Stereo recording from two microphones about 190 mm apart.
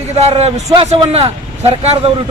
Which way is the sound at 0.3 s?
35° right (ahead or behind).